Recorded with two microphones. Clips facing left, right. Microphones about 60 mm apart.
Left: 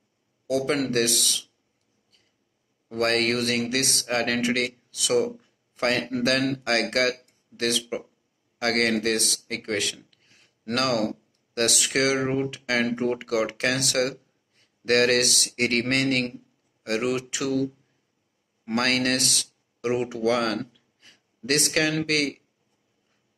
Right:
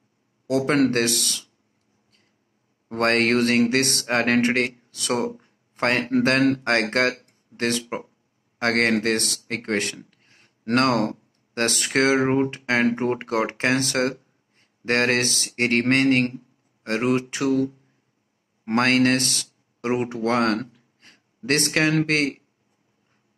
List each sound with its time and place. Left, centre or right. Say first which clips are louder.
0.5 s speech: right 5 dB; right
2.9 s speech: right 4 dB; right